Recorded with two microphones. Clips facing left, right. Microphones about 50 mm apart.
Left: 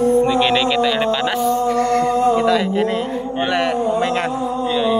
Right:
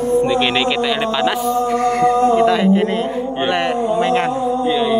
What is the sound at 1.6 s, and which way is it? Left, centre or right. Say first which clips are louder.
Music: right 1 dB; centre.